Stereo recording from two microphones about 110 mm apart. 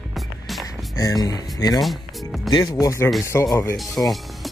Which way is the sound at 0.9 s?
35° left (ahead or behind).